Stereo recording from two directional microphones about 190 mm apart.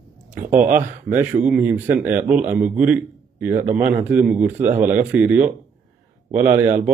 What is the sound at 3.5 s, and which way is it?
Speech, 40° right (ahead or behind).